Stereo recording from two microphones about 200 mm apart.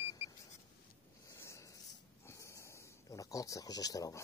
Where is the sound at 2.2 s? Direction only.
15° left (ahead or behind).